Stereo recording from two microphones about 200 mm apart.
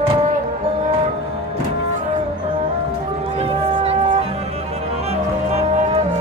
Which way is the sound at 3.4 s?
25° right (ahead or behind).